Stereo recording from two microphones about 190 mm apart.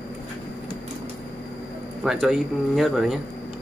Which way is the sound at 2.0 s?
Centre (ahead or behind).